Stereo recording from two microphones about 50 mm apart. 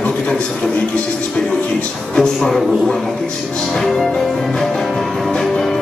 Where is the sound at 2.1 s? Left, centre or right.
Centre.